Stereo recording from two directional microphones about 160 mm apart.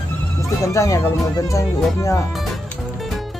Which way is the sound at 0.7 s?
20° left (ahead or behind).